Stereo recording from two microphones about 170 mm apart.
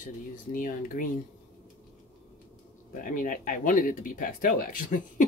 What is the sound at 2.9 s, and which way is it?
Speech, 50° left (ahead or behind).